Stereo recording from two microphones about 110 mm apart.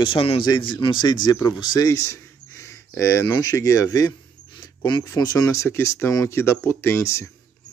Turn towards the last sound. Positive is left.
turn(degrees=25)  # may be behind; listen again after turning